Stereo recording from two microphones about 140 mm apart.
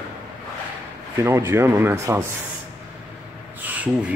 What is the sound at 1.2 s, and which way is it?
Speech, 20° right (ahead or behind).